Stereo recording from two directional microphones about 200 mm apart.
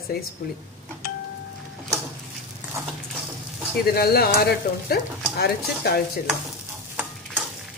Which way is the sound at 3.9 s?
50° left (ahead or behind).